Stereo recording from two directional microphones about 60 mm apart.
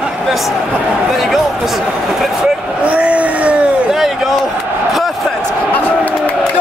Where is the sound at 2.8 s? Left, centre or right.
Right.